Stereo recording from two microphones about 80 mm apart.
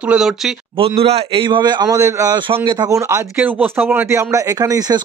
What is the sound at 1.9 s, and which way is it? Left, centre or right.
Speech, right.